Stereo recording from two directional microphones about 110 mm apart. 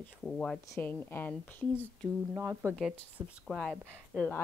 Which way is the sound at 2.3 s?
25° right (ahead or behind).